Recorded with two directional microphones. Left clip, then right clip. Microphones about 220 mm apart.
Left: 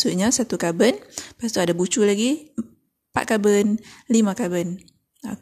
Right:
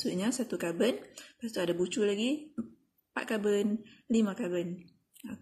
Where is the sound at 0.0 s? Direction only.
40° left (ahead or behind).